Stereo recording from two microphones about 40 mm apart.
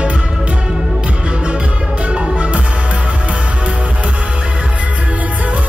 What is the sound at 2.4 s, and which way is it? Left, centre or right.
Music, right.